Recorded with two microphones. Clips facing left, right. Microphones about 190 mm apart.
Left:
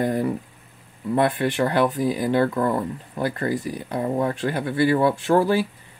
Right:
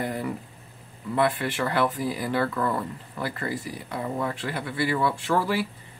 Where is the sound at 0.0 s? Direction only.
40° left (ahead or behind).